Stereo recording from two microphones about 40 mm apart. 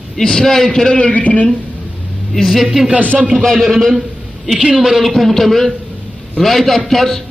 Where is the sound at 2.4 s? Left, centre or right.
Centre.